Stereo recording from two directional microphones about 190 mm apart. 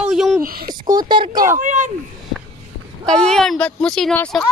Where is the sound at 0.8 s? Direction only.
20° right (ahead or behind).